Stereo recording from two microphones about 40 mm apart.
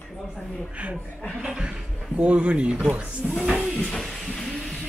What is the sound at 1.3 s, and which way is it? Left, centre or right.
Speech, right.